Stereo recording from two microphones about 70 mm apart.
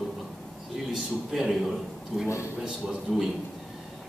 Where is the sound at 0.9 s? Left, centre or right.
Centre.